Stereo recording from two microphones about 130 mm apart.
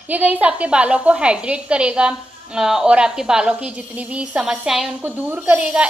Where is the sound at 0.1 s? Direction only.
10° right (ahead or behind).